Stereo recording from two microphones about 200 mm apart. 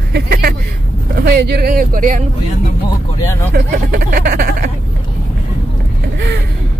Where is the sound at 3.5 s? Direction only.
45° right (ahead or behind).